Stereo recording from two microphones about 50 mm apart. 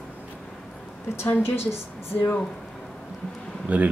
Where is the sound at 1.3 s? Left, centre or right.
Left.